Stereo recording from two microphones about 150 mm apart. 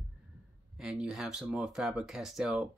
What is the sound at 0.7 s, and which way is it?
Speech, 5° right (ahead or behind).